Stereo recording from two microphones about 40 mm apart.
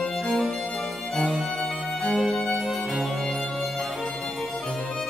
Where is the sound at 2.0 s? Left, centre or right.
Centre.